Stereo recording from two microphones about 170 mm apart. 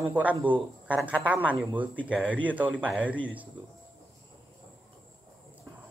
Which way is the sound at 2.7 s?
5° left (ahead or behind).